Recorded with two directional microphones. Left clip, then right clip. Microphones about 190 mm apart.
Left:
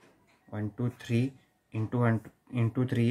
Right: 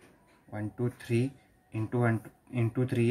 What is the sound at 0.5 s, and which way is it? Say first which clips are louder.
Speech: right 1 dB; 15° left (ahead or behind).